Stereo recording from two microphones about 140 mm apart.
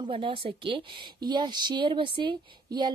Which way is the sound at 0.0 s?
40° right (ahead or behind).